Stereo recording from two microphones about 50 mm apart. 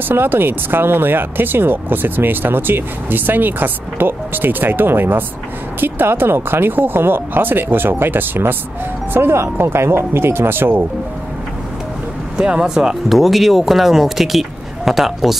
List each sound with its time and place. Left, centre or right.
0.1 s speech: right
12.4 s speech: centre
13.1 s speech: centre